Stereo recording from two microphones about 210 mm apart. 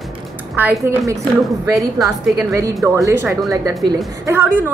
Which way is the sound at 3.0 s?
10° right (ahead or behind).